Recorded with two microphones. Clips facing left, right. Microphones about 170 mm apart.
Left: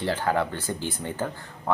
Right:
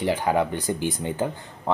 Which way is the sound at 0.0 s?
15° right (ahead or behind).